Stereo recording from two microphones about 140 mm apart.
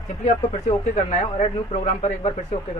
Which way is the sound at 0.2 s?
50° left (ahead or behind).